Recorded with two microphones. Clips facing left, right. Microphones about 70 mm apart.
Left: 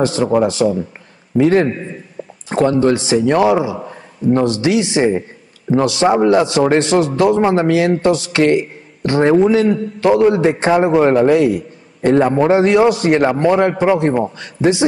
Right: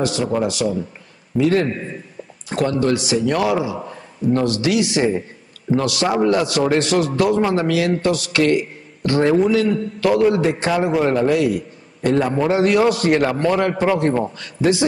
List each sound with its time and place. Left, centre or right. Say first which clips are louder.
0.0 s a man's voice: left 5 dB; left